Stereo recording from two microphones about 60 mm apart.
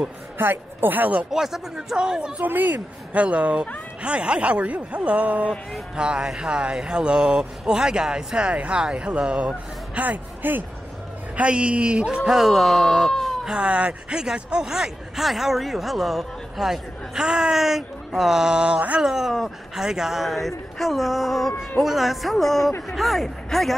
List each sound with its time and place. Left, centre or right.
0.4 s a woman's voice: right
1.3 s speech: centre
2.3 s speech: right
11.3 s speech: centre
12.3 s speech: centre
13.2 s cat: centre
13.5 s speech: centre
19.0 s speech: centre